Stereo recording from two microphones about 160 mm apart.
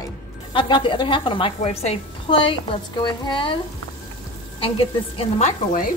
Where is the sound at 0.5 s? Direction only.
30° left (ahead or behind).